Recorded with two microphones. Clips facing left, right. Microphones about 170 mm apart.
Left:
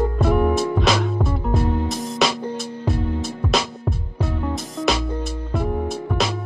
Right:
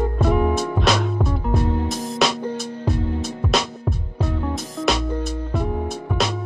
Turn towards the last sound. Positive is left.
turn(degrees=0)  # may be behind; listen again after turning